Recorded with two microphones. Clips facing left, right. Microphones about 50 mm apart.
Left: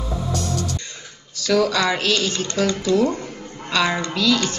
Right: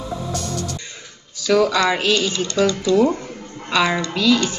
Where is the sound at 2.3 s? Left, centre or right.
Left.